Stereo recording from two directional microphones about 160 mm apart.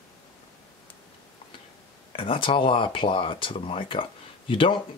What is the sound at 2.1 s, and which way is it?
Speech, 35° left (ahead or behind).